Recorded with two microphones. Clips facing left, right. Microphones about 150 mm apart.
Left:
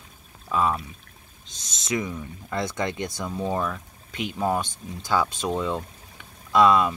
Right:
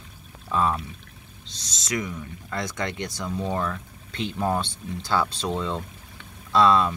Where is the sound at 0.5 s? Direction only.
5° left (ahead or behind).